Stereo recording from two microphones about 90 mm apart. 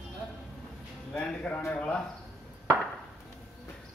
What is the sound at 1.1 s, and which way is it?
Speech, 20° left (ahead or behind).